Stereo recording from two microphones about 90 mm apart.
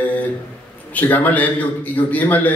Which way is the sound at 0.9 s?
15° left (ahead or behind).